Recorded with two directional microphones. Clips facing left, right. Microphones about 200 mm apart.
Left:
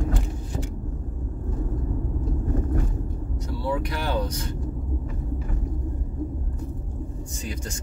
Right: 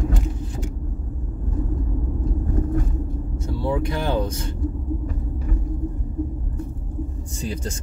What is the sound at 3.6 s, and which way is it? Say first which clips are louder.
Speech: right 4 dB; 25° right (ahead or behind).